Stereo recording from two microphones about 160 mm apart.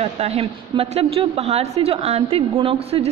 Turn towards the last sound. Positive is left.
turn(degrees=-35)  # may be behind; listen again after turning